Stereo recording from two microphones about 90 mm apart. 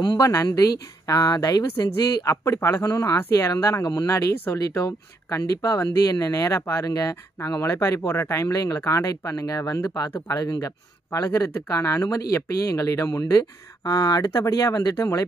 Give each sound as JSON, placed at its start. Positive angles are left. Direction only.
{"t": 0.2, "sound": "a woman's voice", "side_deg": 40}
{"t": 2.4, "sound": "a woman's voice", "side_deg": 30}
{"t": 10.1, "sound": "speech", "side_deg": 35}